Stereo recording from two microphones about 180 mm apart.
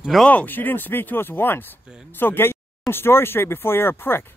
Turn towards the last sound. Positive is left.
turn(degrees=10)  # may be behind; listen again after turning